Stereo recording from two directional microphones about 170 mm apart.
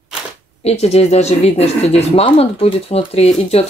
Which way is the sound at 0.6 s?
40° left (ahead or behind).